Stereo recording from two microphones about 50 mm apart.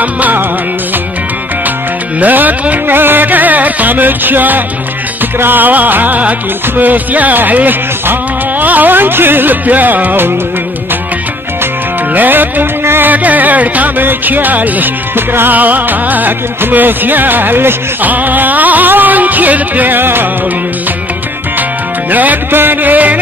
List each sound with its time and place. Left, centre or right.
0.0 s music: right
2.1 s music: right
12.1 s music: right
13.1 s music: right
15.1 s music: right
15.5 s music: right
22.1 s music: right